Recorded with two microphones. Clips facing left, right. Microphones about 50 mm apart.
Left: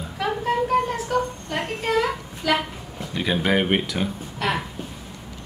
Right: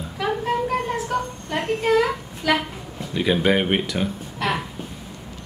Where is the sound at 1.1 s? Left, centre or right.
Centre.